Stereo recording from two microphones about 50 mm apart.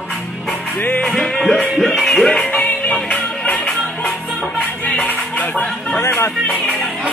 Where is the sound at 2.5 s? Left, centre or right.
Left.